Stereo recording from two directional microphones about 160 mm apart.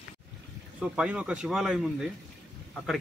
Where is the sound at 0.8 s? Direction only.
5° right (ahead or behind).